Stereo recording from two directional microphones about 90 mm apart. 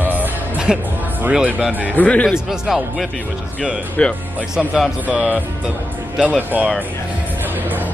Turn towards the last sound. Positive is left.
turn(degrees=-15)  # may be behind; listen again after turning